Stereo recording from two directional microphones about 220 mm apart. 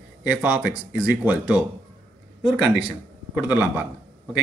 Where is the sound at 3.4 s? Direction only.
10° right (ahead or behind).